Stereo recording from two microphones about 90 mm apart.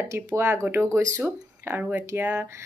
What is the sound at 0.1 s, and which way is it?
Speech, 25° right (ahead or behind).